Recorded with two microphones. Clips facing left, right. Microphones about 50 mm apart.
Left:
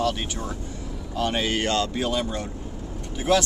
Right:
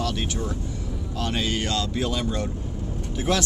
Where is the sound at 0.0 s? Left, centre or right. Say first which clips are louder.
Left 1 dB; centre.